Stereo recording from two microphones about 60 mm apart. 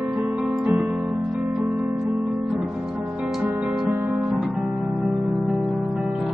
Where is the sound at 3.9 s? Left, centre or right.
Right.